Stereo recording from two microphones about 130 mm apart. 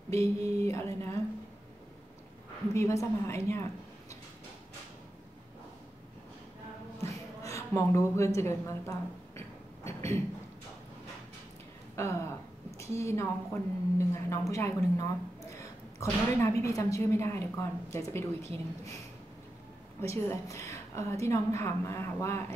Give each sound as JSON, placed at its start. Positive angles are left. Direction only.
{"t": 0.6, "sound": "a woman's voice", "side_deg": 20}
{"t": 2.7, "sound": "a woman's voice", "side_deg": 20}
{"t": 7.1, "sound": "a woman's voice", "side_deg": 25}
{"t": 9.8, "sound": "a sound", "side_deg": 20}
{"t": 11.9, "sound": "a woman's voice", "side_deg": 20}
{"t": 20.0, "sound": "a woman's voice", "side_deg": 20}